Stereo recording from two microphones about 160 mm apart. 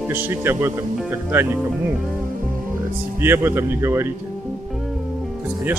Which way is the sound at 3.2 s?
15° right (ahead or behind).